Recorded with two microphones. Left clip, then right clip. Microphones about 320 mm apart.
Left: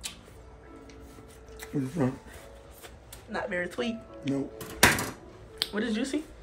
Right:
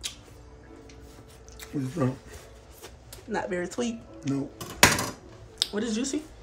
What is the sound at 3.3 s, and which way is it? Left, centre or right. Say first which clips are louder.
Speech: right 1 dB; centre.